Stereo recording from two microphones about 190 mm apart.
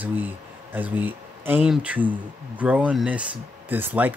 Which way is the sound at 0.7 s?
10° right (ahead or behind).